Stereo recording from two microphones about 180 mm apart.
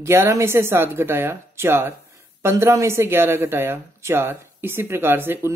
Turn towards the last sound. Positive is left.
turn(degrees=-10)  # may be behind; listen again after turning